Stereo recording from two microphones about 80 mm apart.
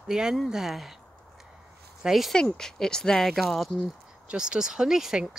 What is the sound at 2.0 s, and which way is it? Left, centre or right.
Speech, centre.